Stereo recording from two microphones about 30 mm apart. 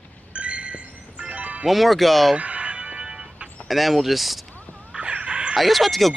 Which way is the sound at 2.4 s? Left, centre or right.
Right.